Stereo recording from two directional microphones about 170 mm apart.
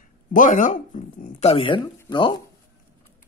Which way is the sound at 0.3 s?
50° left (ahead or behind).